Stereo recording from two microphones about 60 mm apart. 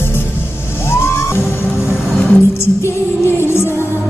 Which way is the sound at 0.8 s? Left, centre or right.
Left.